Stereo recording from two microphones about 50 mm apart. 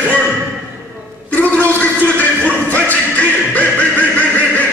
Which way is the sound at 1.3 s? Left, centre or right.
Left.